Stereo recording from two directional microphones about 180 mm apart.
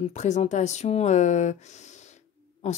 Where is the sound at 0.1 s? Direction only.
40° left (ahead or behind).